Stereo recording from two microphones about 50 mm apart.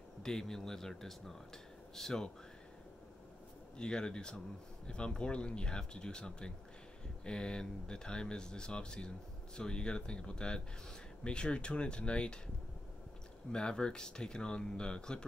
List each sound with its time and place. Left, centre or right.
0.2 s speech: centre
3.7 s speech: centre
13.5 s speech: centre